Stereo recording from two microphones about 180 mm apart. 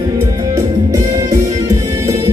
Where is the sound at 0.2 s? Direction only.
20° right (ahead or behind).